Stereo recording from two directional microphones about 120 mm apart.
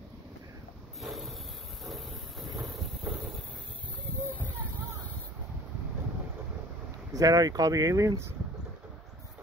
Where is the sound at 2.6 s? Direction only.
Centre (ahead or behind).